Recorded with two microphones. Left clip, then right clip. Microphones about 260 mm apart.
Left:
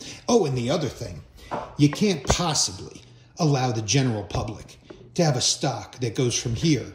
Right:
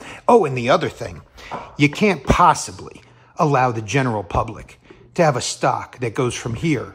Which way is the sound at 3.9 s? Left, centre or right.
Right.